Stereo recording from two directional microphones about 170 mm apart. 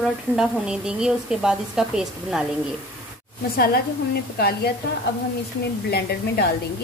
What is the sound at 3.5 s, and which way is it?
A woman's voice, 65° left (ahead or behind).